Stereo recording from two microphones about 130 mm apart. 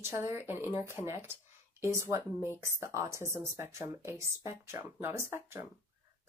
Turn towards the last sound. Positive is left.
turn(degrees=-20)  # may be behind; listen again after turning